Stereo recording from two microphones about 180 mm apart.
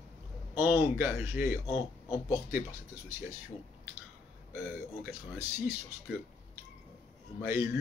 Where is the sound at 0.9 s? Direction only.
10° right (ahead or behind).